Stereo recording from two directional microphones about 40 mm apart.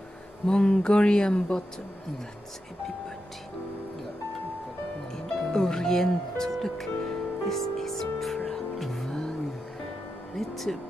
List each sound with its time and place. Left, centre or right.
0.5 s speech: left
5.1 s speech: centre
7.0 s music: centre
10.3 s music: centre